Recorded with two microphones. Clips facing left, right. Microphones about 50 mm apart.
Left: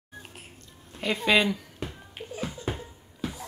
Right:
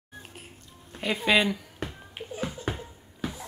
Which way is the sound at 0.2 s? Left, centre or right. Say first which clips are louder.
Right 1 dB; centre.